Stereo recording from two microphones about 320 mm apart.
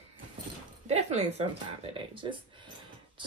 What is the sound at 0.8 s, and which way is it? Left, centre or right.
A woman's voice, centre.